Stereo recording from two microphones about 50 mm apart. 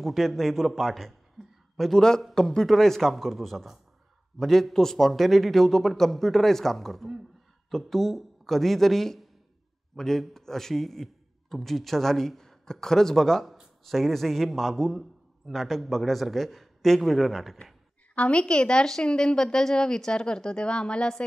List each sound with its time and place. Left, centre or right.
0.0 s a man's voice: centre
2.0 s a woman's voice: centre
18.1 s a woman's voice: left